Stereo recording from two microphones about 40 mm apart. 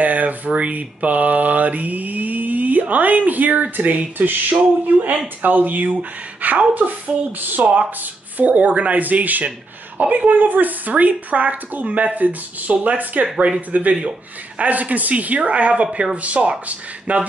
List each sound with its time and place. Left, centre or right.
0.0 s mantra: right
14.6 s speech: right